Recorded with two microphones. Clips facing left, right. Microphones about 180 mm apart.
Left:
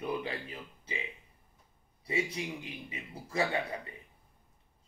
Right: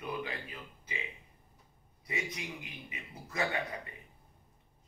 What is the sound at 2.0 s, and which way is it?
Speech, 30° left (ahead or behind).